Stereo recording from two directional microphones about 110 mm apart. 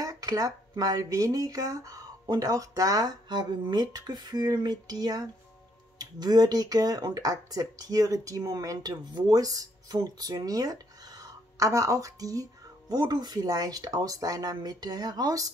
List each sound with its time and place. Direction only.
0.0 s speech: 30° right (ahead or behind)